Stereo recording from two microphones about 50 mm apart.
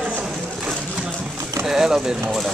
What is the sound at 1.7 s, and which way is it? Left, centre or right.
Speech, centre.